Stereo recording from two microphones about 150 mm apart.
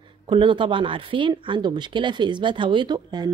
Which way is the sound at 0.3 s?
30° right (ahead or behind).